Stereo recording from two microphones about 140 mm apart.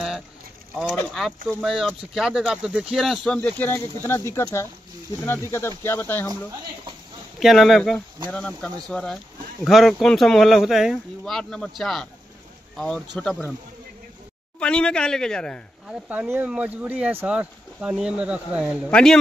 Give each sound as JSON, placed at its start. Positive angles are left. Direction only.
{"t": 0.9, "sound": "speech", "side_deg": 0}
{"t": 3.3, "sound": "speech", "side_deg": 15}
{"t": 7.3, "sound": "speech", "side_deg": 0}
{"t": 14.6, "sound": "speech", "side_deg": 5}
{"t": 15.9, "sound": "speech", "side_deg": -10}
{"t": 18.9, "sound": "speech", "side_deg": 5}